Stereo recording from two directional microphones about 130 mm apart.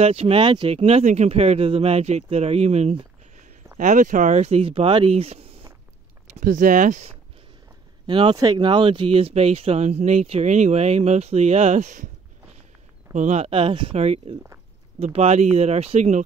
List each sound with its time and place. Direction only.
0.0 s speech: 50° right (ahead or behind)
3.7 s speech: 80° right; by 5.5 s 50° right (ahead or behind)
6.3 s speech: 85° right; by 7.2 s 60° right (ahead or behind)
8.1 s speech: 45° right (ahead or behind)
8.4 s speech: 35° right (ahead or behind); by 16.3 s 60° right (ahead or behind)